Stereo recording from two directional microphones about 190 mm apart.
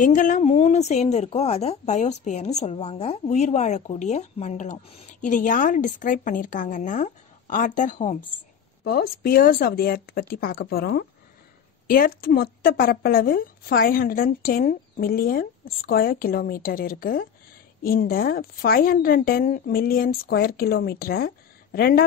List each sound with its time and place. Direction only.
0.0 s a woman's voice: 45° left (ahead or behind)
8.8 s a woman's voice: 55° left (ahead or behind)